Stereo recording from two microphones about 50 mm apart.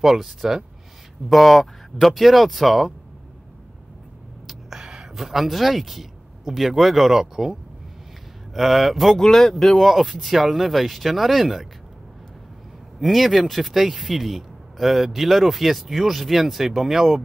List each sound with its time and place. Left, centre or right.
0.0 s speech: centre
4.5 s speech: centre
8.5 s speech: centre
13.0 s speech: centre